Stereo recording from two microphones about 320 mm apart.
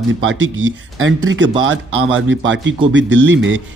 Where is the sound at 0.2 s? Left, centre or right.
Right.